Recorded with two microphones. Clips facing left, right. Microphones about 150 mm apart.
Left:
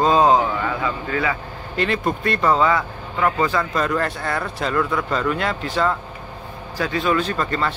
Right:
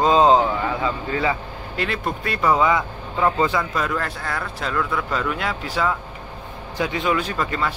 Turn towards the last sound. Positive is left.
turn(degrees=-10)  # may be behind; listen again after turning